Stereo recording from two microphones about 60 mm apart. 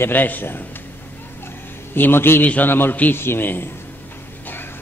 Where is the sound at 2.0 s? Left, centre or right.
Left.